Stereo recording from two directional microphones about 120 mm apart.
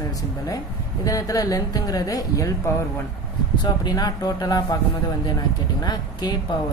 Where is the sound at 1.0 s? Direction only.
30° left (ahead or behind).